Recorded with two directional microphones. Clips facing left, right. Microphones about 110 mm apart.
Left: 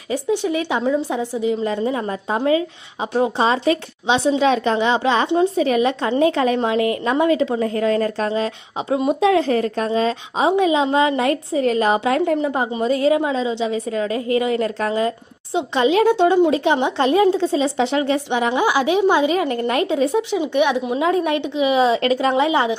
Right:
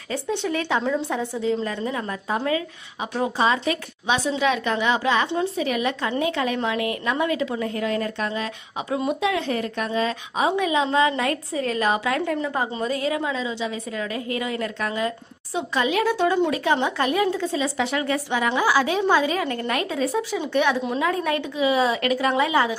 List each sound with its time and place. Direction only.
0.1 s a woman's voice: 10° left (ahead or behind)
21.0 s a woman's voice: 20° left (ahead or behind)